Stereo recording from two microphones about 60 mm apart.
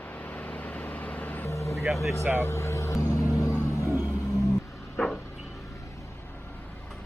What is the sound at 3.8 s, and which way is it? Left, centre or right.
Music, right.